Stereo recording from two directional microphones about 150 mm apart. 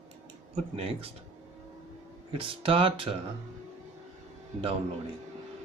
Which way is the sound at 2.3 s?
35° right (ahead or behind).